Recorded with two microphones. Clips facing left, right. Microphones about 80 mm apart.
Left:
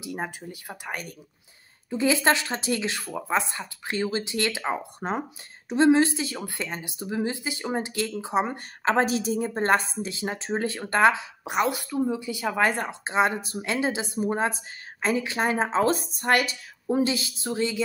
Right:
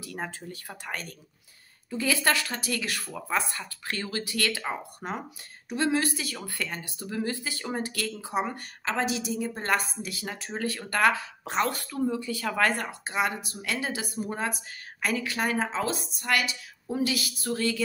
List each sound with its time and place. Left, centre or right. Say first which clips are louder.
0.0 s a woman's voice: left 3 dB; centre
8.8 s a woman's voice: left 6 dB; left; by 17.8 s centre